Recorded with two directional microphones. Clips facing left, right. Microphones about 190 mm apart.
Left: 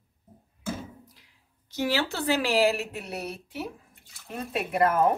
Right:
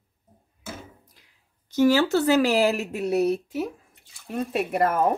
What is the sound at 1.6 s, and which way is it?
Speech, 45° right (ahead or behind).